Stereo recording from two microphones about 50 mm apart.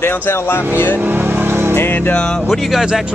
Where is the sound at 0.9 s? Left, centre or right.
Right.